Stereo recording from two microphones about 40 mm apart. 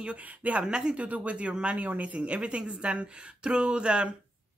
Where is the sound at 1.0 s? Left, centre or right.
Right.